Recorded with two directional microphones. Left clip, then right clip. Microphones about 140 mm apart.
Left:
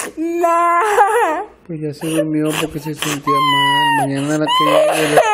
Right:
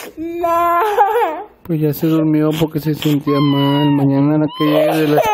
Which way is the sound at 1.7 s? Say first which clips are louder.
Right 5 dB; 50° right (ahead or behind).